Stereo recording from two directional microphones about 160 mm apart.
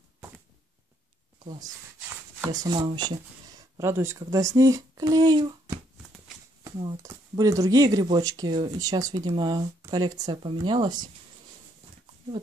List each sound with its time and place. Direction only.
2.4 s speech: 25° right (ahead or behind)
3.7 s speech: 15° right (ahead or behind)
7.0 s speech: 20° right (ahead or behind)